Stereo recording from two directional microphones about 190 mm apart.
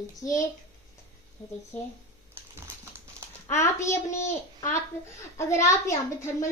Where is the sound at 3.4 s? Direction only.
15° left (ahead or behind).